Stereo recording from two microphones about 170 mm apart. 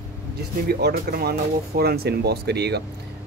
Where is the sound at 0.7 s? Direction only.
70° right (ahead or behind).